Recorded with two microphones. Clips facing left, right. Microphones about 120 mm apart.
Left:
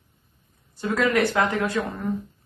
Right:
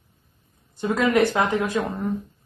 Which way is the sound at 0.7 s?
20° right (ahead or behind).